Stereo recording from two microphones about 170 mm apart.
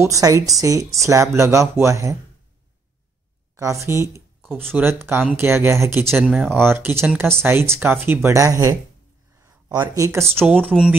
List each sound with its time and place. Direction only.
0.0 s speech: 20° right (ahead or behind)
3.5 s speech: 20° right (ahead or behind)
4.5 s speech: 5° left (ahead or behind)
4.7 s speech: 15° right (ahead or behind)